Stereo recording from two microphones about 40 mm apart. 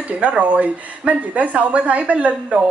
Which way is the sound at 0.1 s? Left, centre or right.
Right.